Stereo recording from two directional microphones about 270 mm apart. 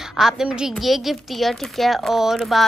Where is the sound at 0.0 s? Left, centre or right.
Centre.